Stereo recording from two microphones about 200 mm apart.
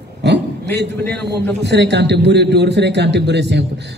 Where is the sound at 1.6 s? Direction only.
60° right (ahead or behind).